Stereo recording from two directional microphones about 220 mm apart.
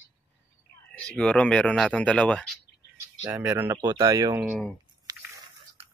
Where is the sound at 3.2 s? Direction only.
10° right (ahead or behind).